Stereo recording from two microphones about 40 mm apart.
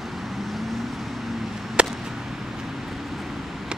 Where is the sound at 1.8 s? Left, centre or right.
Right.